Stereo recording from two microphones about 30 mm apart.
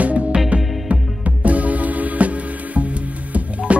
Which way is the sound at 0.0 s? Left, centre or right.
Right.